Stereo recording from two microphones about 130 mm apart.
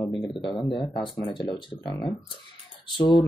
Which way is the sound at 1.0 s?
40° left (ahead or behind).